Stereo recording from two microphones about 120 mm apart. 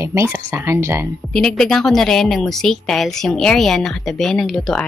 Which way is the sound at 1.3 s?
5° left (ahead or behind).